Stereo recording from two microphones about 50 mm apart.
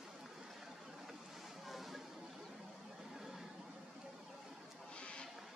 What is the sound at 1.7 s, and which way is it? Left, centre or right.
Music, centre.